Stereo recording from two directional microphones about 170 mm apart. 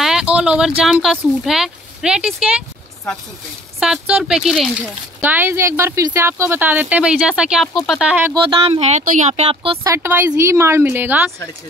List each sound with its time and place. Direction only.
0.0 s speech: 5° right (ahead or behind)
3.8 s speech: 5° right (ahead or behind)
5.2 s speech: 10° right (ahead or behind)
8.4 s speech: 30° right (ahead or behind)
9.0 s speech: 45° right (ahead or behind)
9.8 s speech: 15° right (ahead or behind)